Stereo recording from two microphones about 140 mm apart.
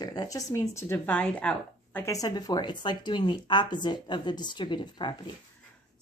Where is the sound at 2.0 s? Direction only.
25° left (ahead or behind).